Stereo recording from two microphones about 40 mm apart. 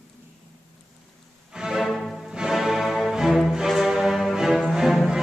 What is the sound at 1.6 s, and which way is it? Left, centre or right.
Music, centre.